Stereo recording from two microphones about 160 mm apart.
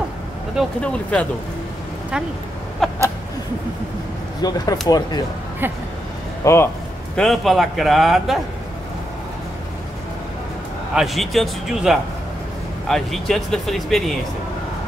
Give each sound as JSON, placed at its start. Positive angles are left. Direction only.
{"t": 0.6, "sound": "speech", "side_deg": 5}
{"t": 2.8, "sound": "speech", "side_deg": 0}
{"t": 4.4, "sound": "speech", "side_deg": 25}
{"t": 6.4, "sound": "speech", "side_deg": 15}
{"t": 7.2, "sound": "speech", "side_deg": 0}
{"t": 11.0, "sound": "speech", "side_deg": 0}